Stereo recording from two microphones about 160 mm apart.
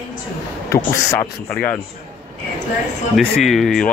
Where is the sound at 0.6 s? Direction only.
20° left (ahead or behind).